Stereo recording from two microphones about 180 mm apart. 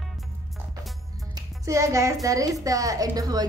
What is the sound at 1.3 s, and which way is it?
A woman's voice, 15° right (ahead or behind).